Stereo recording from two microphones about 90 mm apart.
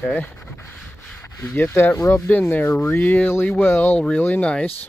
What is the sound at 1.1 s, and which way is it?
Speech, 25° left (ahead or behind).